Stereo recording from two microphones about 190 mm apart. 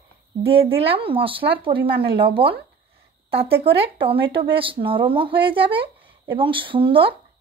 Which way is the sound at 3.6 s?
30° right (ahead or behind).